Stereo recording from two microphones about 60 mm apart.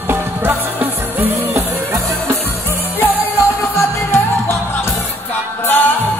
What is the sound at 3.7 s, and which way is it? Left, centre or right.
Music, left.